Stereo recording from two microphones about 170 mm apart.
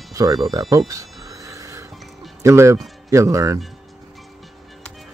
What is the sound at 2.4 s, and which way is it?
Speech, 15° right (ahead or behind).